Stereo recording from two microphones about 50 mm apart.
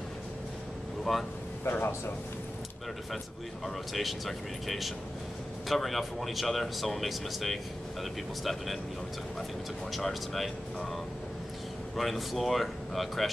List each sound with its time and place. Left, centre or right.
1.1 s speech: centre
1.6 s a man's voice: left
3.6 s speech: centre
9.9 s speech: centre
11.9 s speech: centre